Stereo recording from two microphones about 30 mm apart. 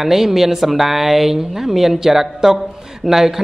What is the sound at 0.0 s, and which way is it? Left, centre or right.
Speech, centre.